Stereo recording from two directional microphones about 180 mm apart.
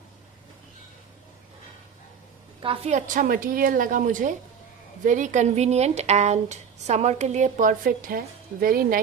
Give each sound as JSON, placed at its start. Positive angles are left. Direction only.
{"t": 2.6, "sound": "a woman's voice", "side_deg": -35}